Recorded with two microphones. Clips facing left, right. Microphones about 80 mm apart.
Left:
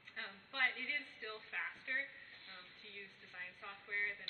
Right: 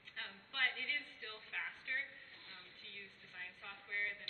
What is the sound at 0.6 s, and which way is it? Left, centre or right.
A woman's voice, centre.